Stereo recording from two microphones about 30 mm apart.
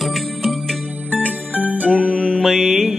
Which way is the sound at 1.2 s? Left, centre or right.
Left.